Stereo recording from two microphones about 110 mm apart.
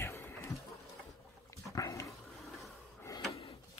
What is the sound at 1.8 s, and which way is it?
Dog, 30° left (ahead or behind).